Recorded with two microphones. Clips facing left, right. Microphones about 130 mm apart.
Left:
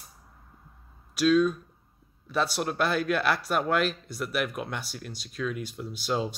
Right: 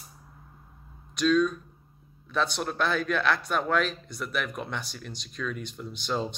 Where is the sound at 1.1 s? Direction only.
5° left (ahead or behind).